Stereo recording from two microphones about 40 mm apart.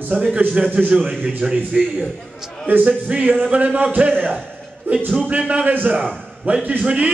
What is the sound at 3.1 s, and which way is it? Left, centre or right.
Music, right.